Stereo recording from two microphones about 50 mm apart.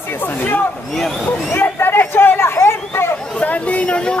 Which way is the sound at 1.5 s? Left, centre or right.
Left.